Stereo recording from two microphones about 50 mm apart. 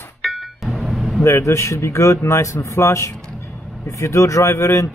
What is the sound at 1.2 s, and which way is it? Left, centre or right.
Speech, left.